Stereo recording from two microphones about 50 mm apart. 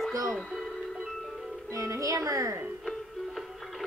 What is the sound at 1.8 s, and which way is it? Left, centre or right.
Speech, right.